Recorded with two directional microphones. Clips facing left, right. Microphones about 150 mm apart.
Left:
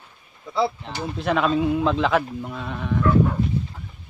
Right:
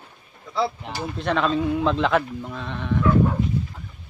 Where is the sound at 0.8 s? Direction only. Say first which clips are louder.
Right 1 dB; 15° right (ahead or behind).